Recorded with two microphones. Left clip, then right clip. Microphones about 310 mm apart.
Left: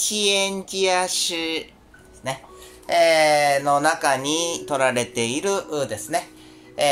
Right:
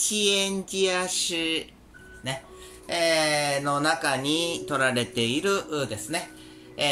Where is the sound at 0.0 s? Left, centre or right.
Centre.